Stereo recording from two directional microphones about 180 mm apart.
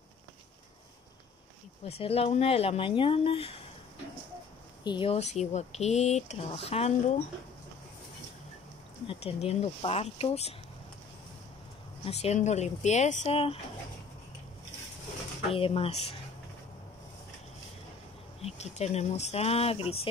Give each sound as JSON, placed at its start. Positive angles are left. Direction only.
{"t": 1.9, "sound": "speech", "side_deg": 35}
{"t": 4.8, "sound": "speech", "side_deg": 30}
{"t": 9.0, "sound": "speech", "side_deg": 30}
{"t": 12.0, "sound": "speech", "side_deg": 35}
{"t": 15.5, "sound": "speech", "side_deg": 30}
{"t": 18.4, "sound": "speech", "side_deg": 35}